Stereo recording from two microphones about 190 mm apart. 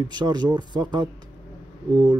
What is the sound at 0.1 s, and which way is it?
Speech, 25° right (ahead or behind).